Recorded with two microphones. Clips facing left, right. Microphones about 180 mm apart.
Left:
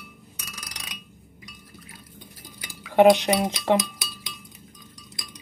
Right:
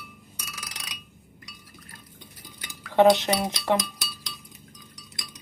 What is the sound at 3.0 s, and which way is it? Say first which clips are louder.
Speech: left 2 dB; 20° left (ahead or behind).